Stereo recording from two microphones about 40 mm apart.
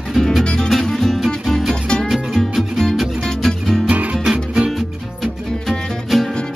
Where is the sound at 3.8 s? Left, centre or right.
Right.